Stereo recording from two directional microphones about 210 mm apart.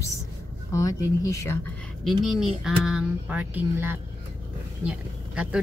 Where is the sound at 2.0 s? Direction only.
Centre (ahead or behind).